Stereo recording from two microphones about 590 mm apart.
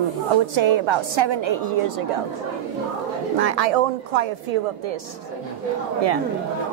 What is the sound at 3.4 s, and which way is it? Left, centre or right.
A woman's voice, right.